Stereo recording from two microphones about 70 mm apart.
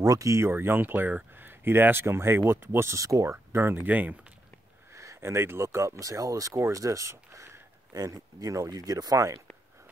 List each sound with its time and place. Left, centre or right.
0.0 s speech: right
0.4 s speech: right
3.5 s speech: right
4.9 s speech: right
7.9 s speech: right